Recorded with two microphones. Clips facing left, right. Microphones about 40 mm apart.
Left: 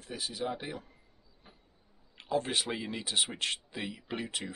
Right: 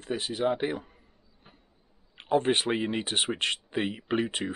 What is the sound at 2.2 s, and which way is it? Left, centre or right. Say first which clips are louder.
Speech: right 7 dB; right.